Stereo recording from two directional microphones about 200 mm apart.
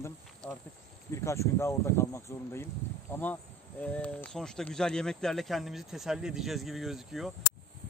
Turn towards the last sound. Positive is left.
turn(degrees=0)  # may be behind; listen again after turning